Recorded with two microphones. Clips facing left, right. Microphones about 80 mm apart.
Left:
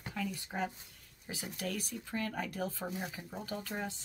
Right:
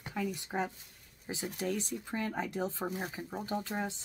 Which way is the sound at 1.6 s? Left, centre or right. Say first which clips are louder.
Right 4 dB; right.